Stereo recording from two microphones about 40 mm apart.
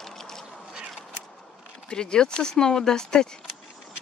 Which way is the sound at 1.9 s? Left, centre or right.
Left.